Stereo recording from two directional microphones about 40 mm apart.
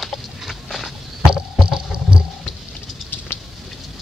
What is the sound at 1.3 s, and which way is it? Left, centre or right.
Vehicle, centre.